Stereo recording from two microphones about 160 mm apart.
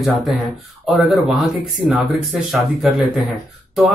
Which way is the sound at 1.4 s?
Centre (ahead or behind).